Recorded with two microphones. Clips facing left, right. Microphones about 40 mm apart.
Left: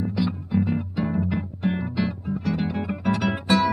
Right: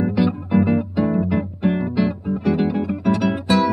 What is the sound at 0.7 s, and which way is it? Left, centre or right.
Music, centre.